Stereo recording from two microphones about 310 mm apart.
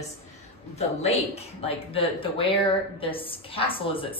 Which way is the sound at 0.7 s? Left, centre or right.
Centre.